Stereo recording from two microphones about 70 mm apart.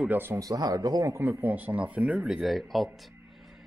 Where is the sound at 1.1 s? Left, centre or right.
Right; by 2.2 s centre.